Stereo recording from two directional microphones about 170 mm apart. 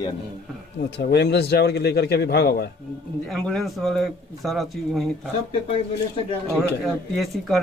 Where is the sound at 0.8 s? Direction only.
85° left.